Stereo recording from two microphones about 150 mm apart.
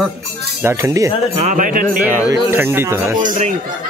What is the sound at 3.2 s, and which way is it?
Music, 60° right (ahead or behind).